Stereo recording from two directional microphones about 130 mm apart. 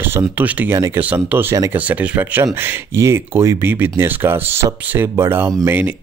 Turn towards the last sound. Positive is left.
turn(degrees=-15)  # may be behind; listen again after turning